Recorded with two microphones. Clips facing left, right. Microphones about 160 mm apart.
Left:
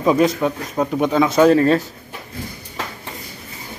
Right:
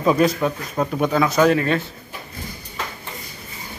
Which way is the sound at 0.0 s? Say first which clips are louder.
Left 2 dB; 15° left (ahead or behind).